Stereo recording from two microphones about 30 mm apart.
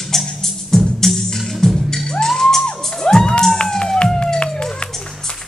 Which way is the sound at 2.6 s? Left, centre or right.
Left.